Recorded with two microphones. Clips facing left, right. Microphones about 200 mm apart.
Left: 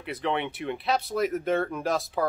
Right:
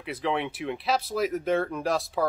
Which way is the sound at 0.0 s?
Centre (ahead or behind).